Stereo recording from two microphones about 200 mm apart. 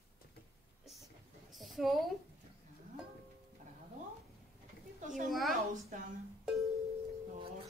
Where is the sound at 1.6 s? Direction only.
Centre (ahead or behind).